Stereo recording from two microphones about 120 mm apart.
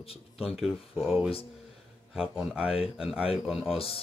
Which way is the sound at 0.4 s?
5° right (ahead or behind).